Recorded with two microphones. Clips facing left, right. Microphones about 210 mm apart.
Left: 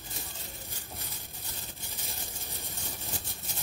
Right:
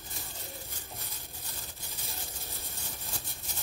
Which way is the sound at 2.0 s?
15° left (ahead or behind).